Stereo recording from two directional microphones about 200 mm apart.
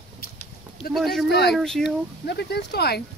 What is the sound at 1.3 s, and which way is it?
Speech, 55° left (ahead or behind).